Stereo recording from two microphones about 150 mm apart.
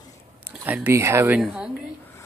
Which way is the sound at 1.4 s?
5° right (ahead or behind).